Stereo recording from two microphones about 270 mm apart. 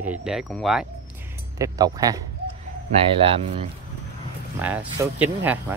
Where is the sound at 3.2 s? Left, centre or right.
Right.